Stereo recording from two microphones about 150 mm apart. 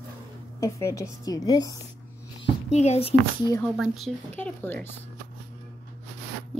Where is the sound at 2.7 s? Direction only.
45° left (ahead or behind).